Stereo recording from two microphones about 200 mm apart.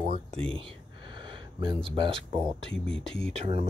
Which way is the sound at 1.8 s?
25° right (ahead or behind).